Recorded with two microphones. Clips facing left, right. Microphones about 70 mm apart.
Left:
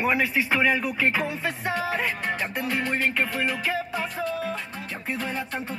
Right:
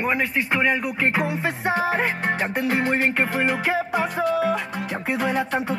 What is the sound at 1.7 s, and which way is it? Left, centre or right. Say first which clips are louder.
Music: right 6 dB; right.